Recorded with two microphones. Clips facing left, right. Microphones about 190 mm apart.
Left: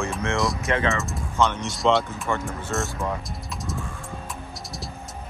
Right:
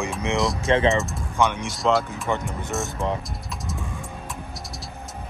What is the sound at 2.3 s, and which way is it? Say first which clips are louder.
Speech: right 2 dB; 15° right (ahead or behind).